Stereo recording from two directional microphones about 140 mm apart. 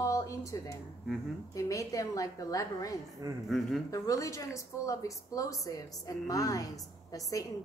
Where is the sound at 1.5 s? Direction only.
25° left (ahead or behind).